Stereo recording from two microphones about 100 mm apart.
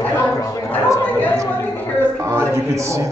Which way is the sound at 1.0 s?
20° left (ahead or behind).